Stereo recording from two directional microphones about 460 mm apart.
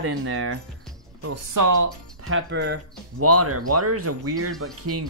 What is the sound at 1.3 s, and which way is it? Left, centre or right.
Speech, right.